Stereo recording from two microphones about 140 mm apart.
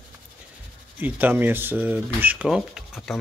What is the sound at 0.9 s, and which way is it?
Speech, 15° right (ahead or behind).